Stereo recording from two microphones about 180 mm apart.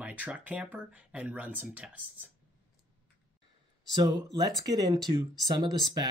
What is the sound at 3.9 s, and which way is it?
Speech, 20° right (ahead or behind).